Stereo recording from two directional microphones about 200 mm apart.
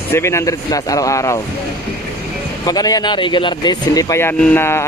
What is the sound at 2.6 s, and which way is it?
Speech, 20° left (ahead or behind).